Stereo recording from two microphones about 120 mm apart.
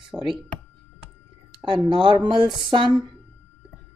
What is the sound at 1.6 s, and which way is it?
A woman's voice, 40° right (ahead or behind).